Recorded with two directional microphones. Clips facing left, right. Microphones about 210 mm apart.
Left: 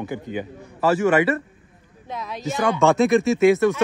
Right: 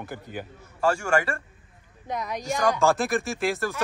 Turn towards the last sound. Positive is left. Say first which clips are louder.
# left 11 dB
turn(degrees=0)  # may be behind; listen again after turning